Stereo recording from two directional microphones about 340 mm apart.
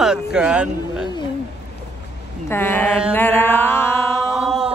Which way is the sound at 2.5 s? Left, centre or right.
Centre.